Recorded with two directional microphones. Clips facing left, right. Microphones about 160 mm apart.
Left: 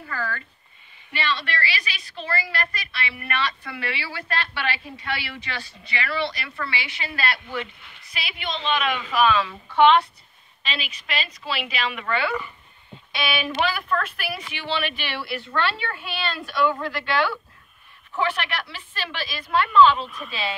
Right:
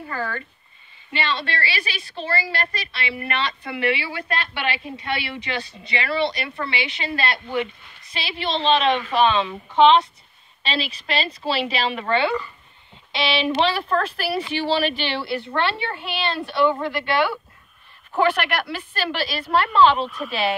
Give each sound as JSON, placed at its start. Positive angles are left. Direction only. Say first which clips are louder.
{"t": 0.0, "sound": "a woman's voice", "louder": "right 2 dB", "side_deg": -25}
{"t": 10.6, "sound": "a woman's voice", "louder": "right 6 dB", "side_deg": -35}
{"t": 18.3, "sound": "speech", "louder": "right 5 dB", "side_deg": -60}
{"t": 19.0, "sound": "a woman's voice", "louder": "right 7 dB", "side_deg": -35}
{"t": 20.2, "sound": "speech", "louder": "right 7 dB", "side_deg": -60}